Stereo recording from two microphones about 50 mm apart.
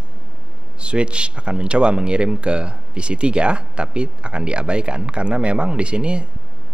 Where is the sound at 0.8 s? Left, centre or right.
Right.